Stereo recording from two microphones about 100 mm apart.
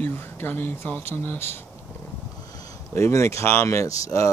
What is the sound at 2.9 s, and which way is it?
Speech, 30° left (ahead or behind).